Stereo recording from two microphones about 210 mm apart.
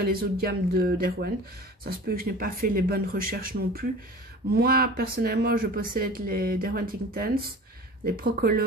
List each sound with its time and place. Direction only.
0.0 s speech: 45° right (ahead or behind)